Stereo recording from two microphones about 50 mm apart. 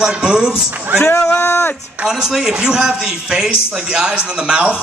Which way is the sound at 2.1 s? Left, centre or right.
Centre.